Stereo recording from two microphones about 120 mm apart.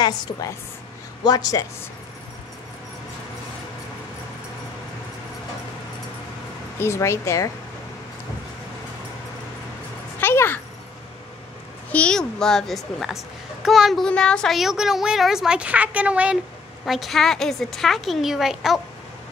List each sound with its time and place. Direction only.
0.0 s a woman's voice: 35° left (ahead or behind)
6.8 s speech: 20° left (ahead or behind)
10.2 s a sound: 20° left (ahead or behind)
11.9 s a child's voice: 10° left (ahead or behind)